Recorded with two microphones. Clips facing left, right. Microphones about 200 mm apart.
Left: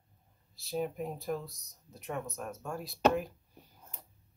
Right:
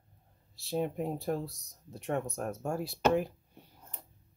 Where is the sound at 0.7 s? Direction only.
30° right (ahead or behind).